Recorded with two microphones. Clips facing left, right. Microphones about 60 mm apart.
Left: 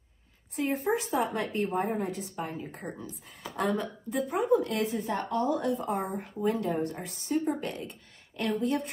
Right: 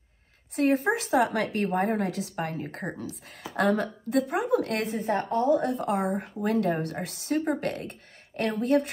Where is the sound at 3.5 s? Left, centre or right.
Right.